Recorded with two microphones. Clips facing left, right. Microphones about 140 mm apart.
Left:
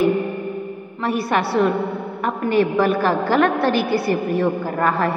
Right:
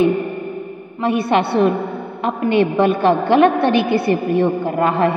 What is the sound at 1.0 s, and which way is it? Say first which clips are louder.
A woman's voice: right 4 dB; 25° right (ahead or behind).